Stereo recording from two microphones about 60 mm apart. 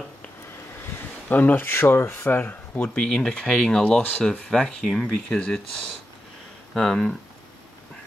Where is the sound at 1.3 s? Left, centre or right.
Left.